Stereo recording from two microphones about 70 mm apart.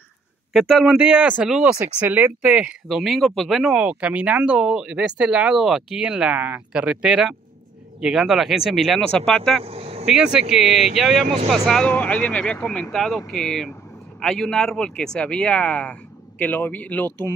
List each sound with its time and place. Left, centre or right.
0.5 s speech: centre
0.9 s speech: centre
2.9 s speech: centre
3.7 s speech: centre
5.6 s speech: centre
9.1 s speech: centre
10.0 s speech: centre
11.8 s speech: left